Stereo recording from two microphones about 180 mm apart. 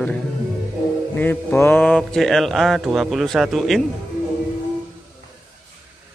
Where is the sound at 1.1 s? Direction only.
10° left (ahead or behind).